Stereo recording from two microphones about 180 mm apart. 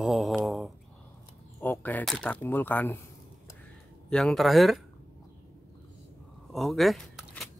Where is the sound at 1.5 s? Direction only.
10° left (ahead or behind).